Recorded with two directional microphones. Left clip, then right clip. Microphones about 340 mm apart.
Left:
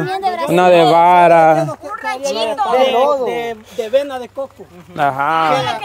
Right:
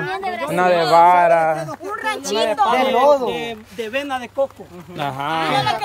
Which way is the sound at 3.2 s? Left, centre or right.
Left.